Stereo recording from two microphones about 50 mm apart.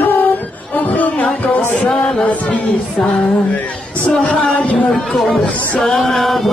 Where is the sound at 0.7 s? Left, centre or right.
Left.